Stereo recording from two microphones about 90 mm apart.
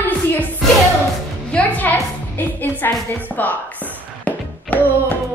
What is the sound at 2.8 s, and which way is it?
Speech, 25° left (ahead or behind).